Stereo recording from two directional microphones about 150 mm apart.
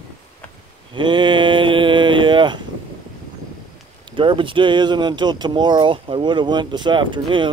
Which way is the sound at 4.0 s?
35° right (ahead or behind).